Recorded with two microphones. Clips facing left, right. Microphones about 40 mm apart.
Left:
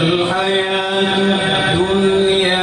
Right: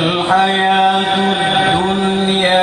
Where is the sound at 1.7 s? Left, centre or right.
Centre.